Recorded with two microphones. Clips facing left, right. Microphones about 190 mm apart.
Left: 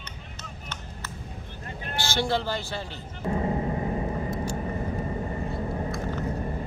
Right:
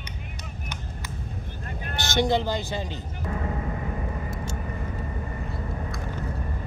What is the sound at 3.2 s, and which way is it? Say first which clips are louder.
Vehicle: left 5 dB; 25° left (ahead or behind).